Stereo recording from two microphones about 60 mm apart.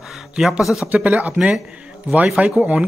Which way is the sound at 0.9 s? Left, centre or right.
Right.